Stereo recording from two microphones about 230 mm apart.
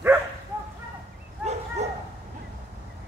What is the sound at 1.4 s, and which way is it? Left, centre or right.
Dog, right.